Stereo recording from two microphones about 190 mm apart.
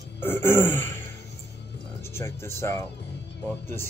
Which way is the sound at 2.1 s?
15° left (ahead or behind).